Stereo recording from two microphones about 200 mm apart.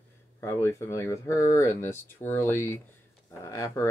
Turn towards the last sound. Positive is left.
turn(degrees=15)  # may be behind; listen again after turning